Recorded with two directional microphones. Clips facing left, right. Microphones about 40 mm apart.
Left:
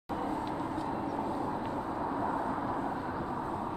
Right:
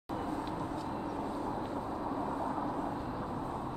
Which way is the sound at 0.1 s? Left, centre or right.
Left.